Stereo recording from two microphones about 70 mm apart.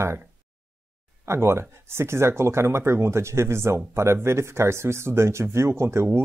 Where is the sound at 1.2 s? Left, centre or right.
Right.